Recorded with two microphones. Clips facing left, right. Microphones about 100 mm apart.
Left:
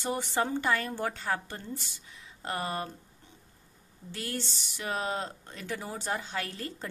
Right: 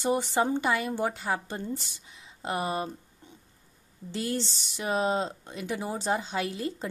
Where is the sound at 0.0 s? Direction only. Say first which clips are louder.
Right 4 dB; 20° right (ahead or behind).